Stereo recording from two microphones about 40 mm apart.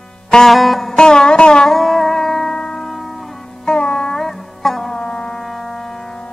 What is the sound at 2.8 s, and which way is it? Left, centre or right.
Music, centre.